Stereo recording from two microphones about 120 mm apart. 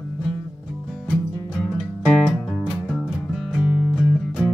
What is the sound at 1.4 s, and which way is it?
Music, centre (ahead or behind).